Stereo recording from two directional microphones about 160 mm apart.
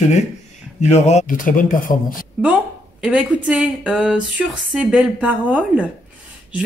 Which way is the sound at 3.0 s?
5° right (ahead or behind).